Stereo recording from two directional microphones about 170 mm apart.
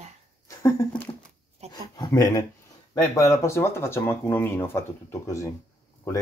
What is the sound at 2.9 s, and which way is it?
Speech, 20° left (ahead or behind).